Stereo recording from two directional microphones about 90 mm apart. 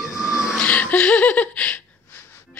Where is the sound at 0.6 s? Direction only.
15° left (ahead or behind).